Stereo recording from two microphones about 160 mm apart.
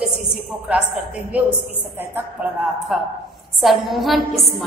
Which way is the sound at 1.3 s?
10° right (ahead or behind).